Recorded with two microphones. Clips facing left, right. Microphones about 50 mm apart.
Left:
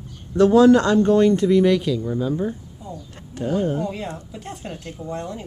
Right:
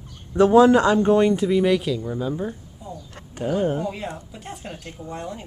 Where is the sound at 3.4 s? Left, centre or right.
Right.